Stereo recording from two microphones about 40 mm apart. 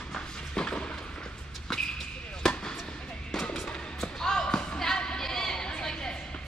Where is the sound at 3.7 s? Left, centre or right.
Left.